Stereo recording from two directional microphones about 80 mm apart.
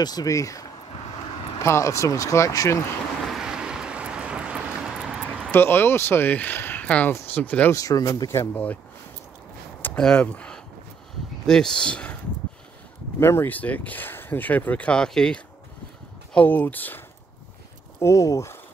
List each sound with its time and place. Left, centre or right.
0.0 s speech: left
3.3 s vehicle: centre
5.5 s speech: left
7.4 s speech: centre
7.7 s speech: left
9.9 s speech: centre
13.2 s speech: left; by 15.4 s centre
16.3 s speech: left
18.0 s speech: left